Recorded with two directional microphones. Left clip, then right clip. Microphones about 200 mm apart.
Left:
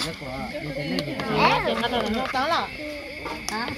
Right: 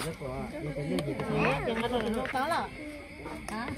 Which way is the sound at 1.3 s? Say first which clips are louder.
Left 10 dB; 50° left (ahead or behind).